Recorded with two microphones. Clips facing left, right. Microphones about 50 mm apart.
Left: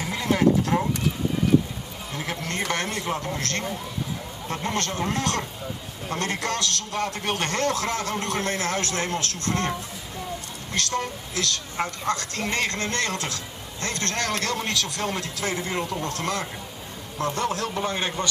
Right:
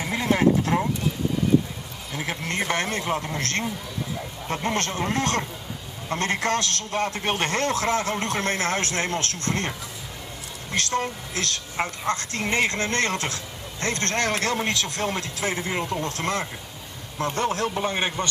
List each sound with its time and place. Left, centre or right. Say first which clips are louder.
0.1 s a sound: even; right
2.1 s speech: right 2 dB; right
10.8 s speech: right 2 dB; right
11.3 s speech: left 1 dB; right
15.4 s speech: right 1 dB; right
16.2 s speech: right 1 dB; right
17.8 s speech: even; right